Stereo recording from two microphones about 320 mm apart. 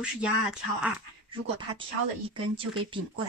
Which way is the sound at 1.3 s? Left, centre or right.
Centre.